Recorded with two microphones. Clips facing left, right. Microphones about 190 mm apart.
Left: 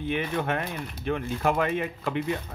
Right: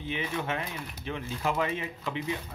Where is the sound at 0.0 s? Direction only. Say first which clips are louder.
Left 5 dB; 55° left (ahead or behind).